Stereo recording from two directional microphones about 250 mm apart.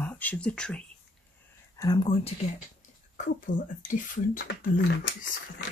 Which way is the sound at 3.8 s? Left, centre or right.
Left.